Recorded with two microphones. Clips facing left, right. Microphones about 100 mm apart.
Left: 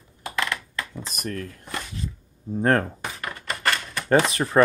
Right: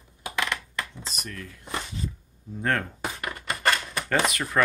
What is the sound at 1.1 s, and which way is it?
Speech, 45° left (ahead or behind).